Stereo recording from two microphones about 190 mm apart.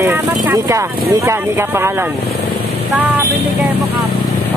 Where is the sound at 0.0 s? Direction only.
10° right (ahead or behind).